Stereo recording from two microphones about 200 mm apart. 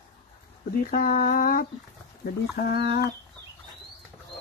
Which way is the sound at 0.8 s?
45° left (ahead or behind).